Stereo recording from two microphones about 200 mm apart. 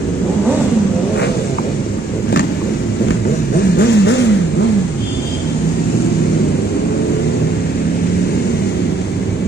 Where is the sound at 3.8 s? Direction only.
60° left (ahead or behind).